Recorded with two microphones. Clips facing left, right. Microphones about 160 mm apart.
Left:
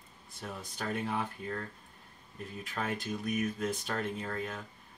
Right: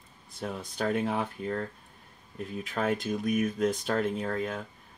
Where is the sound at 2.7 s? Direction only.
60° right (ahead or behind).